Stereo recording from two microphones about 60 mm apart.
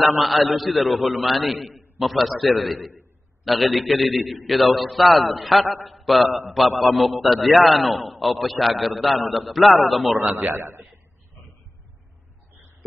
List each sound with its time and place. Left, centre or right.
0.0 s a man's voice: centre
10.3 s a man's voice: right